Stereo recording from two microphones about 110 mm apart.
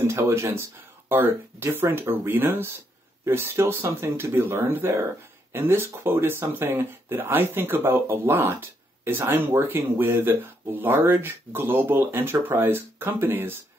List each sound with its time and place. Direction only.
0.0 s speech: 25° right (ahead or behind)